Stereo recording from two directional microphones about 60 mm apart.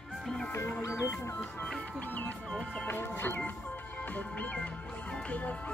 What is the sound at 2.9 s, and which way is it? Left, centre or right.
Organ, left.